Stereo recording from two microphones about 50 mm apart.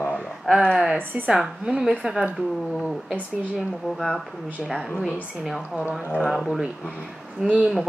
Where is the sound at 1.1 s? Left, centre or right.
Centre.